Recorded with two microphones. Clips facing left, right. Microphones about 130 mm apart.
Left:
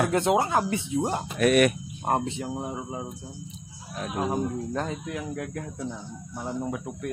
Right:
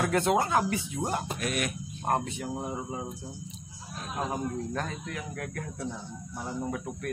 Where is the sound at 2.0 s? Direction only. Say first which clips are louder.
Left 3 dB; 20° left (ahead or behind).